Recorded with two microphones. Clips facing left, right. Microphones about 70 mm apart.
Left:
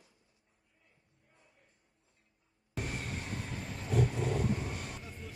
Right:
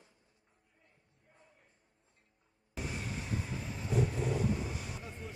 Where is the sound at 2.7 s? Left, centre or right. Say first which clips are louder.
Left 1 dB; left.